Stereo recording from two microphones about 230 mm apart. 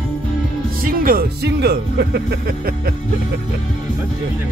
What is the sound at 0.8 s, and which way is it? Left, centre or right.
Speech, right.